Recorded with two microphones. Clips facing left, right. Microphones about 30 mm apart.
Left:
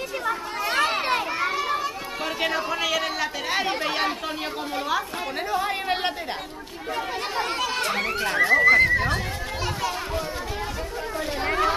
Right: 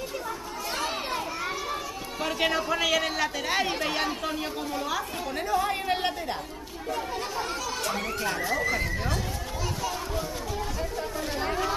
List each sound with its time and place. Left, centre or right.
0.3 s children playing: left
2.4 s a woman's voice: centre
5.5 s speech: left
7.3 s speech: left
11.1 s speech: left